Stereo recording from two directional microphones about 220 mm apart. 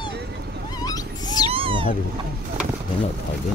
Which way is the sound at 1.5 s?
25° right (ahead or behind).